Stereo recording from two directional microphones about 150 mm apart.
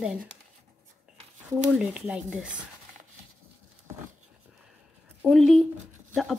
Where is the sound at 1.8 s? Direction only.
5° right (ahead or behind).